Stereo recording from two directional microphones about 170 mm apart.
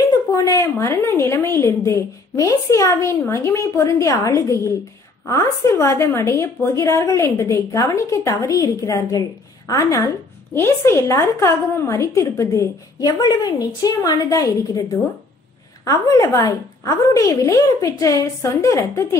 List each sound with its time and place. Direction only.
0.3 s a woman's voice: 20° left (ahead or behind)